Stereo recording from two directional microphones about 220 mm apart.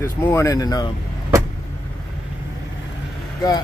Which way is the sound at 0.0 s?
15° left (ahead or behind).